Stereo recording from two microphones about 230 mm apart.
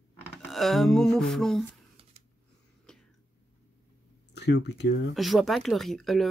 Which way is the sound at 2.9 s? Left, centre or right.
Centre.